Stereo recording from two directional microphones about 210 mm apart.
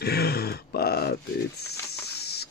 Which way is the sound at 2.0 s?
50° left (ahead or behind).